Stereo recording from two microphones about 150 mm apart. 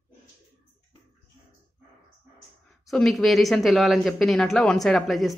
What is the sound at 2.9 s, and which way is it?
Speech, centre (ahead or behind).